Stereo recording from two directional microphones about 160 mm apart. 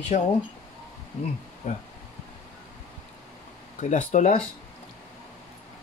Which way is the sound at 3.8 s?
50° left (ahead or behind).